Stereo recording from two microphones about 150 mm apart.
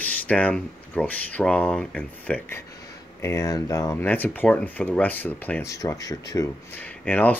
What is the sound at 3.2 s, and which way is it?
Speech, 20° left (ahead or behind).